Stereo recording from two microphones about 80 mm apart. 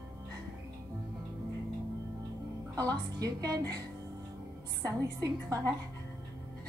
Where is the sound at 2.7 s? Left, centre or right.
Right.